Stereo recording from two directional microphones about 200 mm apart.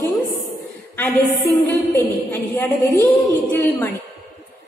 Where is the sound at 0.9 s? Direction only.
10° left (ahead or behind).